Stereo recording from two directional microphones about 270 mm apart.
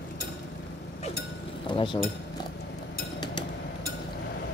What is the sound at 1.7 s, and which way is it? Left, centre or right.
Speech, centre.